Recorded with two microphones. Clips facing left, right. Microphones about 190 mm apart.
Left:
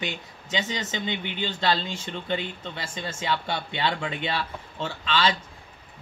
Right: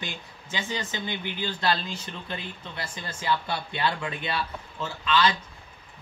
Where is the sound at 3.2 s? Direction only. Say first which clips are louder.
Right 1 dB; 25° left (ahead or behind).